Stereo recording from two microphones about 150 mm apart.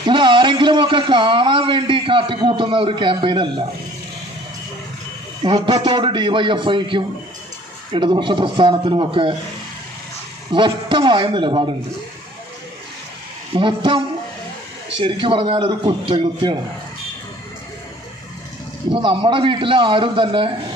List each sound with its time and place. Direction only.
0.0 s a man's voice: 30° right (ahead or behind)
5.4 s a man's voice: 30° right (ahead or behind)
10.5 s a man's voice: 30° right (ahead or behind)
13.6 s a man's voice: 35° right (ahead or behind)
18.9 s a man's voice: 35° right (ahead or behind)